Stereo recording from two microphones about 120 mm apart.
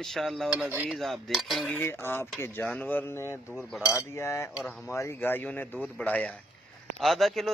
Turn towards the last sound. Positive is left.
turn(degrees=0)  # may be behind; listen again after turning